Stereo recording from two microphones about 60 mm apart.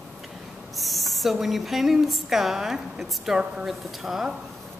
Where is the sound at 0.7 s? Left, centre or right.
Centre.